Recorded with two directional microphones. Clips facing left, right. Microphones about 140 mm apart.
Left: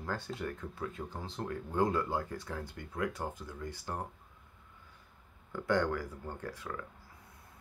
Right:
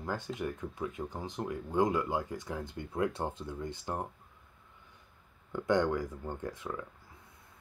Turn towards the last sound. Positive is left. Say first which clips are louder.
# right 3 dB
turn(degrees=-20)  # may be behind; listen again after turning